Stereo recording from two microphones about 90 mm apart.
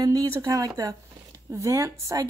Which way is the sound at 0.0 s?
45° right (ahead or behind).